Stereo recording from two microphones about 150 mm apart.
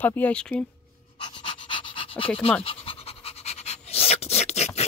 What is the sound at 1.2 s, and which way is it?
Pant, 35° left (ahead or behind).